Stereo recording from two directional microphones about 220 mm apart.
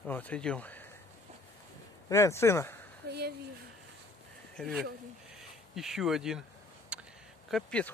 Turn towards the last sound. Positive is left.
turn(degrees=5)  # may be behind; listen again after turning